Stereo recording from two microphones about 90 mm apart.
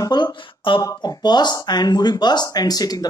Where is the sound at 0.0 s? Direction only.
55° left (ahead or behind).